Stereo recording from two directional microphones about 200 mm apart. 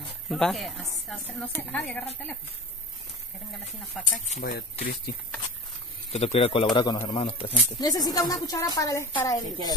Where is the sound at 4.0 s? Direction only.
Centre (ahead or behind).